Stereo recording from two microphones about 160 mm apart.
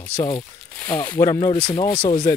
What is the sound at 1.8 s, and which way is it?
Speech, 35° left (ahead or behind).